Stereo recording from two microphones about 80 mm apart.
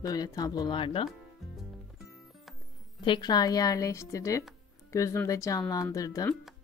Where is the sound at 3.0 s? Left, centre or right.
Left.